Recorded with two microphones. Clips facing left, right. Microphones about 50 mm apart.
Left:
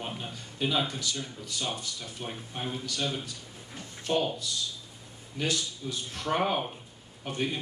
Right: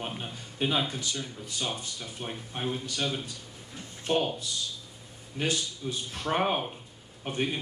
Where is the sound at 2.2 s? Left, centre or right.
Centre.